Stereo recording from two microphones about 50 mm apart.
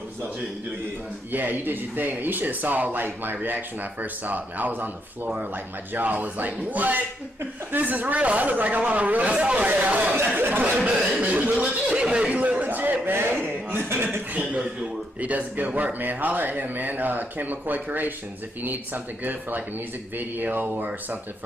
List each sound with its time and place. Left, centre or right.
1.3 s speech: right
10.3 s speech: right
11.6 s speech: right
12.4 s a sound: right
13.4 s chuckle: right
14.3 s speech: right
20.2 s speech: right